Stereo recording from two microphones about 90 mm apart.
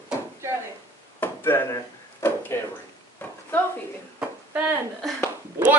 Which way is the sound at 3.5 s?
20° left (ahead or behind).